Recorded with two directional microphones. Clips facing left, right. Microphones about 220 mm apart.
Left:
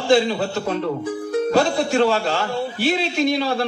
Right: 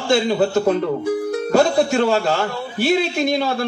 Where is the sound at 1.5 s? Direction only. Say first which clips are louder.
Right 4 dB; 45° right (ahead or behind).